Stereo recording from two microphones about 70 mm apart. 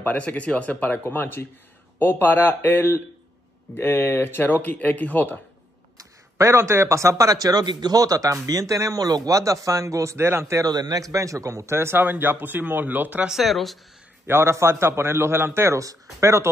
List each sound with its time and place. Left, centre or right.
0.0 s speech: left
5.9 s speech: right
10.6 s speech: right
13.3 s speech: centre
14.2 s speech: right
15.8 s speech: right